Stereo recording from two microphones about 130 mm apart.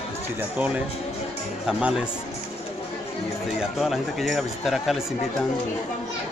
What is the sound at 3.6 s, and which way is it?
Speech, centre (ahead or behind).